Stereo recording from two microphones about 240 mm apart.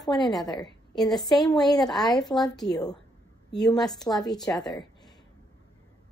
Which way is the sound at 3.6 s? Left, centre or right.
Centre.